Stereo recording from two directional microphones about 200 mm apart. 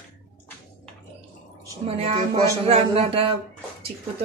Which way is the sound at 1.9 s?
30° right (ahead or behind).